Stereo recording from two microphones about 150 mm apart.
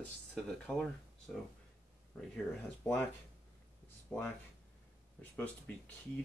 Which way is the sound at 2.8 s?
10° left (ahead or behind).